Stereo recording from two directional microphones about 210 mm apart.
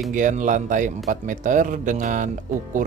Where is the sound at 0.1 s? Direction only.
35° right (ahead or behind).